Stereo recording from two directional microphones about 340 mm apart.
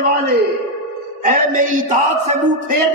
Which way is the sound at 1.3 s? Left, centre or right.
Right.